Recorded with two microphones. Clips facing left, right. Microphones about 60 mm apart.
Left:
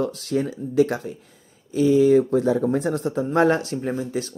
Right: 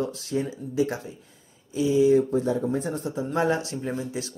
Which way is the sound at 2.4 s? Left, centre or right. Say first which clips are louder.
Left 5 dB; left.